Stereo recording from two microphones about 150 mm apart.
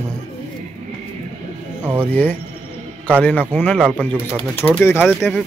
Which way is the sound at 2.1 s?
10° left (ahead or behind).